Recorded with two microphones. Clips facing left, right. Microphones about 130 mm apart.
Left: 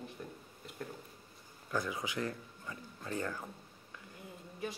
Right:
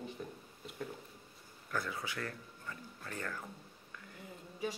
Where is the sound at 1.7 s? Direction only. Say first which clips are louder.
Left 3 dB; 15° left (ahead or behind).